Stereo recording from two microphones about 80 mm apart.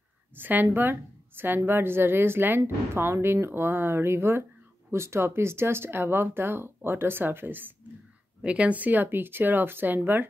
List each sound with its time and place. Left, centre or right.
0.4 s a woman's voice: right